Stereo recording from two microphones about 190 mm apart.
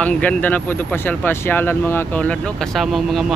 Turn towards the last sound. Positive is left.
turn(degrees=0)  # may be behind; listen again after turning